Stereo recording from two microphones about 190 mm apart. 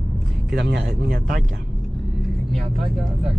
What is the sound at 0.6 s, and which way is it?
Speech, 65° right (ahead or behind).